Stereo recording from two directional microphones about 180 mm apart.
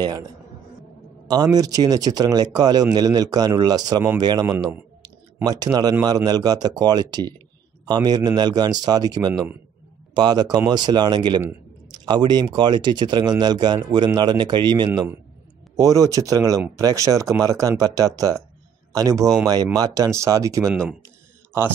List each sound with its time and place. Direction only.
1.2 s speech: 20° right (ahead or behind)